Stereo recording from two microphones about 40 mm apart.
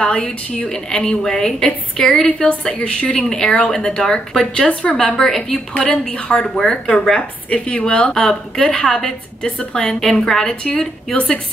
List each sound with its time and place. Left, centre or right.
0.0 s a woman's voice: left
5.8 s a woman's voice: left
7.2 s a woman's voice: left